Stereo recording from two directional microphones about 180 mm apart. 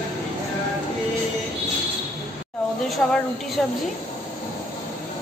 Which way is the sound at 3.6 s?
5° left (ahead or behind).